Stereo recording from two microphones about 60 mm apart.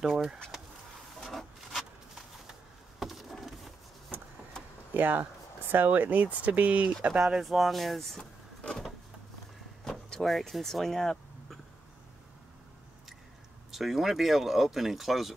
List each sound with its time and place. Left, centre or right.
0.0 s speech: centre
1.2 s rub: centre
3.0 s a sound: centre
4.9 s speech: right
7.4 s speech: centre
9.8 s vehicle: centre
13.7 s speech: centre